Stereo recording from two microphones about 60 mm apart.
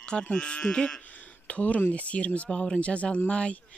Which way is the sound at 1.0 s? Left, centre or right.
Left.